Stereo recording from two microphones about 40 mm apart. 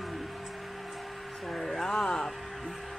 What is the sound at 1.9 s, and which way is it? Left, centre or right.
Music, centre.